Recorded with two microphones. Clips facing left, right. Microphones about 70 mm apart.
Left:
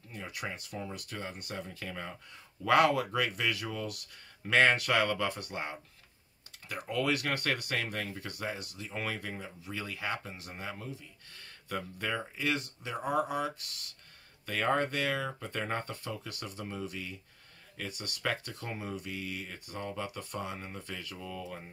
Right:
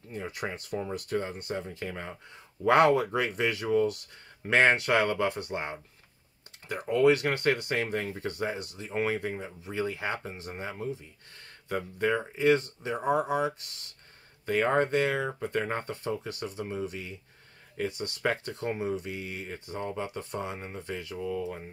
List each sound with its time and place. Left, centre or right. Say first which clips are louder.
0.1 s speech: right 5 dB; right